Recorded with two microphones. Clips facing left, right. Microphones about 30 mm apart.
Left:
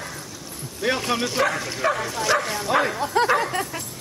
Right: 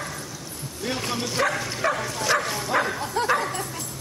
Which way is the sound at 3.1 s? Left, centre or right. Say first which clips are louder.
Left 6 dB; left.